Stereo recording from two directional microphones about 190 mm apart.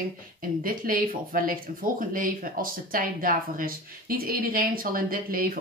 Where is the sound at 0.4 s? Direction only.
50° right (ahead or behind).